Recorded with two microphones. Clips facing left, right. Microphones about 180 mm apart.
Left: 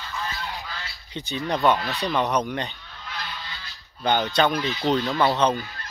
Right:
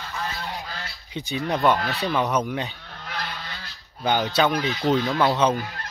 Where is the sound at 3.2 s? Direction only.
45° right (ahead or behind).